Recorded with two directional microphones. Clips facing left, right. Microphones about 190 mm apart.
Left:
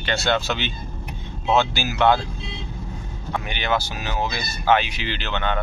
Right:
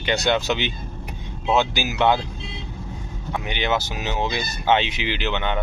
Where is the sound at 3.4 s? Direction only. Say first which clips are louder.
Right 1 dB; 20° right (ahead or behind).